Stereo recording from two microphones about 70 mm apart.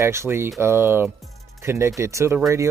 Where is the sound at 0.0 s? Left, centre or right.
Right.